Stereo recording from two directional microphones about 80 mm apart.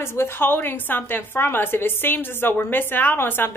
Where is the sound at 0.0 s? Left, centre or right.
Left.